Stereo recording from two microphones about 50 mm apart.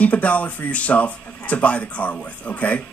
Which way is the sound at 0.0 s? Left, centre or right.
Left.